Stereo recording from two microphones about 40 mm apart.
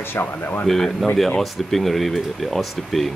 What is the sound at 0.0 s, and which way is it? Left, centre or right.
Speech, left.